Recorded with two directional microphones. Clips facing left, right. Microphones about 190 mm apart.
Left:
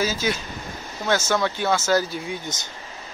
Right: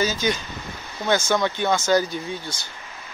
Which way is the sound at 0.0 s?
5° left (ahead or behind).